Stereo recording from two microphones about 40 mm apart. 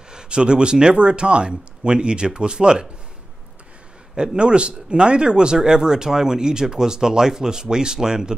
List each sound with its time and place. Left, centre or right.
0.1 s speech: right
4.1 s speech: centre